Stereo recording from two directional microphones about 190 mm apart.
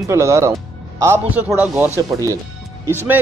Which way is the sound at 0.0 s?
15° right (ahead or behind).